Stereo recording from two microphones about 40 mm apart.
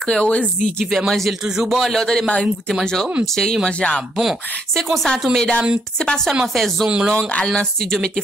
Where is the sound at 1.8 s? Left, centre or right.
Centre.